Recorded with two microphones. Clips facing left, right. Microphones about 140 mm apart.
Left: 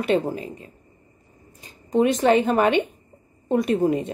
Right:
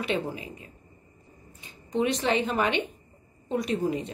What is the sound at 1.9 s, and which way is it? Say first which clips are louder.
A woman's voice: left 8 dB; 45° left (ahead or behind).